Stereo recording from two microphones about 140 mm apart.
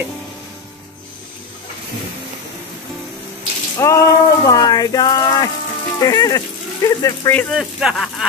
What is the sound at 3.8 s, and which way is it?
Speech, 20° left (ahead or behind).